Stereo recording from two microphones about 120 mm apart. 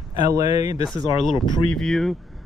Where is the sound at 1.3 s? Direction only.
40° left (ahead or behind).